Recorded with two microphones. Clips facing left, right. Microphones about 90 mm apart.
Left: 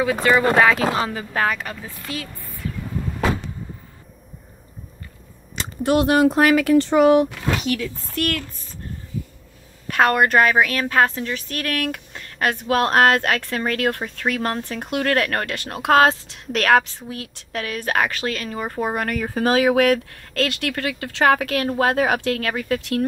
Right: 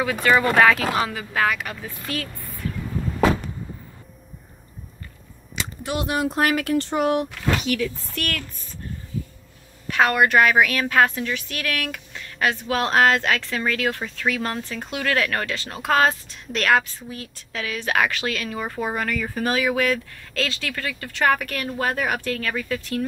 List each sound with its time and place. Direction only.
0.0 s speech: 25° left (ahead or behind)
2.1 s speech: 20° left (ahead or behind)
5.6 s speech: 55° left (ahead or behind)
7.6 s speech: 35° left (ahead or behind)
9.8 s a woman's voice: 45° left (ahead or behind)
14.9 s a woman's voice: 45° left (ahead or behind)
18.9 s speech: 60° left (ahead or behind)